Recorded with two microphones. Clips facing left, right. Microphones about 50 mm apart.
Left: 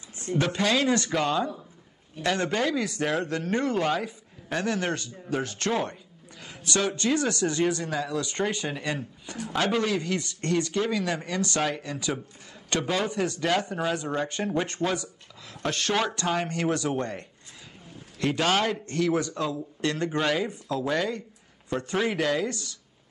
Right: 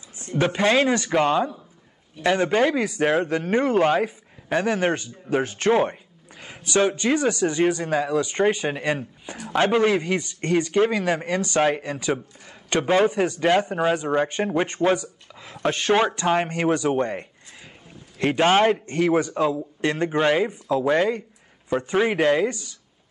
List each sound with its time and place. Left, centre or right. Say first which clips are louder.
0.4 s speech: right 6 dB; right
2.6 s a man's voice: right 6 dB; right
6.4 s a sound: right 5 dB; right
6.8 s a man's voice: right 5 dB; right